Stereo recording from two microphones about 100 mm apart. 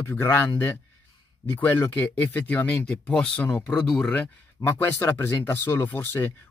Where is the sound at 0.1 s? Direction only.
20° left (ahead or behind).